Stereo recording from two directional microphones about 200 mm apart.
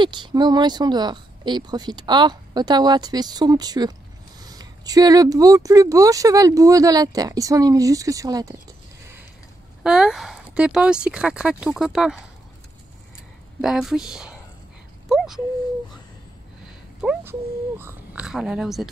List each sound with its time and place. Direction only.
0.0 s speech: 20° right (ahead or behind)
9.8 s speech: centre (ahead or behind)
13.6 s speech: centre (ahead or behind)
16.6 s speech: 5° right (ahead or behind)